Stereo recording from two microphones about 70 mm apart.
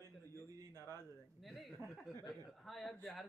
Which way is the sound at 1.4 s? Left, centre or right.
Centre.